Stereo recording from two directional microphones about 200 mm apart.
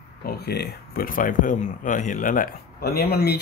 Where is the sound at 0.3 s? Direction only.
55° left (ahead or behind).